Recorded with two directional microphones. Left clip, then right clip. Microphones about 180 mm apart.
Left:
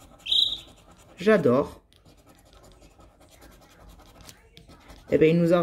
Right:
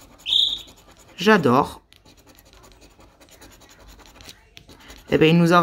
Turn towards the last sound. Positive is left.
turn(degrees=-25)  # may be behind; listen again after turning